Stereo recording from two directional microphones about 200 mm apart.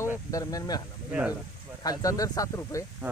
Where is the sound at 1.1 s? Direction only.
5° right (ahead or behind).